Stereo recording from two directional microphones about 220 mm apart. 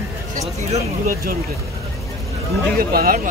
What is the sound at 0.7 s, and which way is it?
Speech, 40° right (ahead or behind).